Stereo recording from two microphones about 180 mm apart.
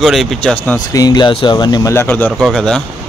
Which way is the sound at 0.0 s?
Centre (ahead or behind).